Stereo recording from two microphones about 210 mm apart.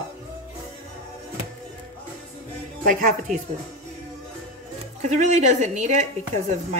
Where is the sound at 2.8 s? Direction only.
40° right (ahead or behind).